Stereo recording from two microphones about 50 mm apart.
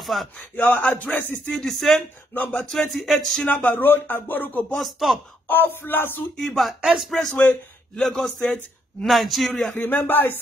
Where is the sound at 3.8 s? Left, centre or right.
Left.